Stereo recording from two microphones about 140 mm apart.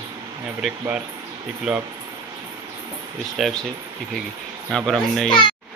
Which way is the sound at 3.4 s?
Centre (ahead or behind).